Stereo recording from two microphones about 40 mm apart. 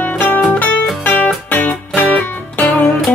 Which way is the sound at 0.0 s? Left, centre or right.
Left.